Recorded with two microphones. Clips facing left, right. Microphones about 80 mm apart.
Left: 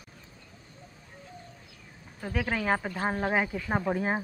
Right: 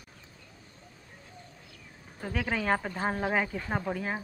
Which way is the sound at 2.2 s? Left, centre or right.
Centre.